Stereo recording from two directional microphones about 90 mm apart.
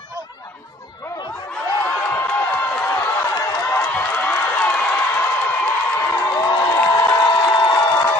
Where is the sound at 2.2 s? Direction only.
20° left (ahead or behind).